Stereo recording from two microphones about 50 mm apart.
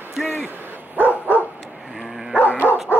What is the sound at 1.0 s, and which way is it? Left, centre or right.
Bow-wow, right.